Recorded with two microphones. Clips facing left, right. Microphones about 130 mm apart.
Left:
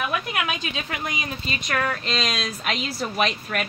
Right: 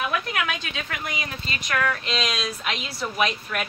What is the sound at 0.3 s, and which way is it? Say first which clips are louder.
Speech: left 1 dB; 15° left (ahead or behind).